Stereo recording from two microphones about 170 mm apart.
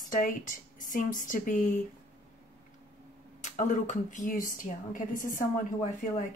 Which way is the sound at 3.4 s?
45° left (ahead or behind).